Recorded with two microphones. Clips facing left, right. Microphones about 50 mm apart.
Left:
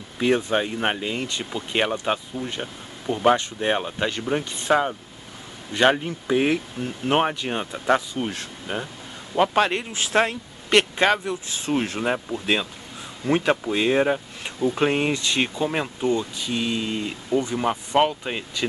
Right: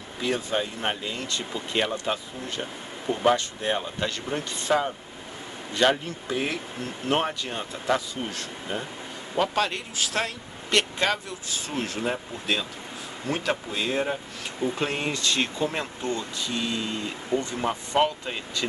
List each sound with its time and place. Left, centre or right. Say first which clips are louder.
0.2 s speech: left 6 dB; left
2.6 s speech: left 1 dB; centre
3.3 s speech: left 4 dB; left
17.3 s speech: left 4 dB; right
17.6 s speech: left 2 dB; left